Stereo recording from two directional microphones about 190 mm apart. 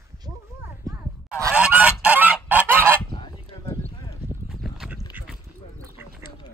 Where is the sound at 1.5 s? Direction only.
5° right (ahead or behind).